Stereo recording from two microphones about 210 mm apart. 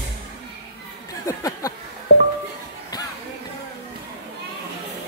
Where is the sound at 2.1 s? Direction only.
50° left (ahead or behind).